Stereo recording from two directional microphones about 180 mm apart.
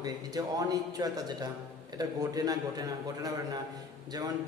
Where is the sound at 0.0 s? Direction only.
20° right (ahead or behind).